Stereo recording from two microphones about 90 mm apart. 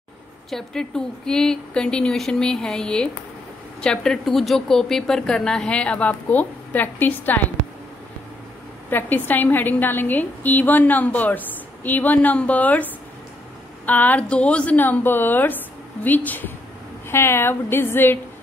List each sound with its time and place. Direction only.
0.5 s a woman's voice: 5° left (ahead or behind)
8.9 s a woman's voice: 20° left (ahead or behind)
13.8 s a woman's voice: 20° left (ahead or behind)